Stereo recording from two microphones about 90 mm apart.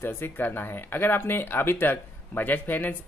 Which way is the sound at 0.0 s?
25° left (ahead or behind).